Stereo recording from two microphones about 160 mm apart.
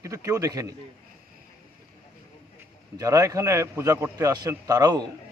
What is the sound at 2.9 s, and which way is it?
A man's voice, 20° right (ahead or behind).